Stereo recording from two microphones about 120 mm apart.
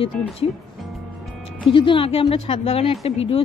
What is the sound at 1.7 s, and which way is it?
Speech, 45° left (ahead or behind).